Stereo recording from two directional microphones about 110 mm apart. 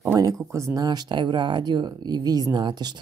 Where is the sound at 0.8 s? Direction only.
40° right (ahead or behind).